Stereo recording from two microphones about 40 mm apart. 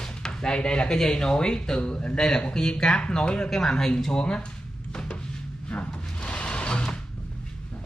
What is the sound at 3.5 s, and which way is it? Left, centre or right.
Speech, centre.